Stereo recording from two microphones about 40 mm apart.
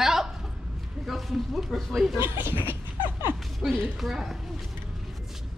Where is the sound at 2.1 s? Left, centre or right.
Right.